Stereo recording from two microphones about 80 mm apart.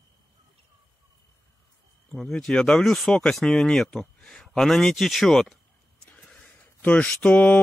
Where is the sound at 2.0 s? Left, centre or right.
Centre.